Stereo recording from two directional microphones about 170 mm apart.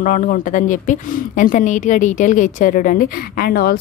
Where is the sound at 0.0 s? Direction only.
55° left (ahead or behind).